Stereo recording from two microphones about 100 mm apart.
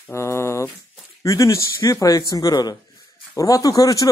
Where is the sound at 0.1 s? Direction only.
25° left (ahead or behind).